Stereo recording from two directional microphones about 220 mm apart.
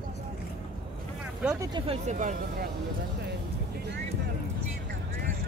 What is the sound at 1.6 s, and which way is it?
Speech, 20° right (ahead or behind).